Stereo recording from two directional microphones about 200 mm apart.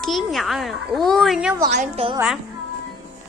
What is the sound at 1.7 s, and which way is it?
Speech, 30° right (ahead or behind).